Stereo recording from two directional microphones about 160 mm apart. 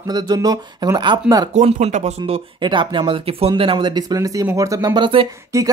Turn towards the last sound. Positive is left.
turn(degrees=-20)  # may be behind; listen again after turning